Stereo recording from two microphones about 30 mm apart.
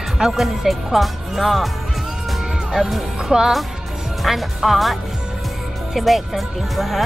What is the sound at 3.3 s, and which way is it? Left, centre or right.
Speech, centre.